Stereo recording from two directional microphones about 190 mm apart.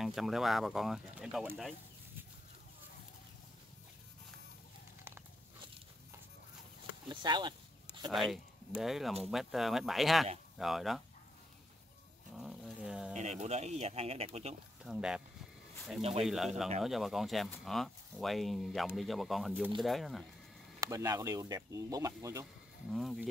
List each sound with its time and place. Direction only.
0.0 s speech: centre (ahead or behind)
7.1 s speech: 25° right (ahead or behind)
8.1 s speech: centre (ahead or behind)
12.4 s a sound: centre (ahead or behind)
13.1 s speech: 35° right (ahead or behind)
14.8 s speech: 5° right (ahead or behind)
16.0 s speech: 30° right (ahead or behind)
16.3 s speech: centre (ahead or behind)
20.8 s speech: 20° right (ahead or behind)
22.8 s speech: centre (ahead or behind)